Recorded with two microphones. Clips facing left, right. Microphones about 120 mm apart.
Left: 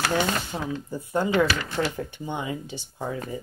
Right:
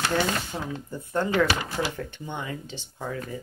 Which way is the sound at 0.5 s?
10° left (ahead or behind).